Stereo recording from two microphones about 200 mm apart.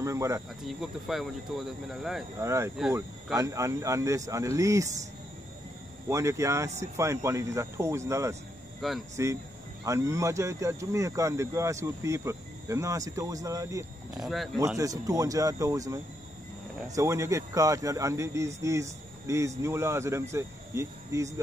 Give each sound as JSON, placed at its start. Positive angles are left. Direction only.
{"t": 0.0, "sound": "speech", "side_deg": -15}
{"t": 0.7, "sound": "speech", "side_deg": 0}
{"t": 2.4, "sound": "speech", "side_deg": -15}
{"t": 6.0, "sound": "speech", "side_deg": -15}
{"t": 14.1, "sound": "speech", "side_deg": 0}
{"t": 14.8, "sound": "speech", "side_deg": -15}